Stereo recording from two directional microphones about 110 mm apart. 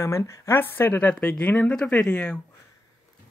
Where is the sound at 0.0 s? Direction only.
25° left (ahead or behind); by 2.4 s 10° left (ahead or behind).